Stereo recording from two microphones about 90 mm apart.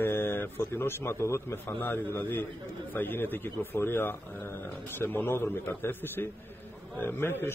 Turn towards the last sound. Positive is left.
turn(degrees=25)  # may be behind; listen again after turning